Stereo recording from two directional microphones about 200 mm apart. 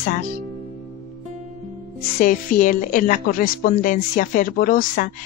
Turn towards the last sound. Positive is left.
turn(degrees=45)  # may be behind; listen again after turning